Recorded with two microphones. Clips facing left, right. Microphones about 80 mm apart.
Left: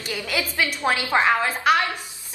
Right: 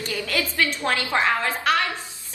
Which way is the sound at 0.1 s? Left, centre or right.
Centre.